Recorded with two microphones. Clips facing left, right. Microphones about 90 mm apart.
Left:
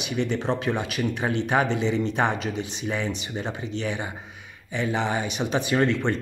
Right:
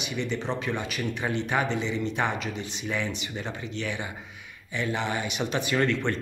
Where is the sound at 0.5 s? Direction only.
15° left (ahead or behind).